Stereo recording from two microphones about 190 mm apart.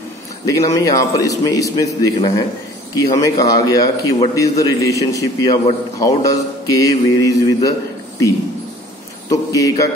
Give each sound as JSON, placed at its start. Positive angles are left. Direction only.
{"t": 0.5, "sound": "a man's voice", "side_deg": 15}
{"t": 9.3, "sound": "speech", "side_deg": 20}